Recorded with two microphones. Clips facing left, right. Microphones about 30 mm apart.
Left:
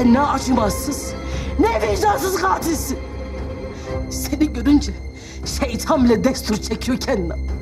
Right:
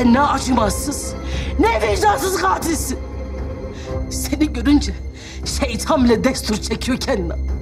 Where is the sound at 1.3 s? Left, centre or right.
Right.